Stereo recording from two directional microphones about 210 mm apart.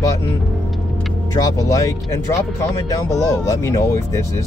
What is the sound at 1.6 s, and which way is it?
Speech, 15° left (ahead or behind).